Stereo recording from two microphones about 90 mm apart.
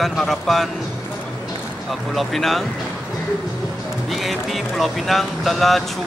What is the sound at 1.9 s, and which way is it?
Speech, centre (ahead or behind).